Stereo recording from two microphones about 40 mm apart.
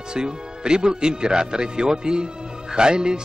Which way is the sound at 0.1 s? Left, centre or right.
Right.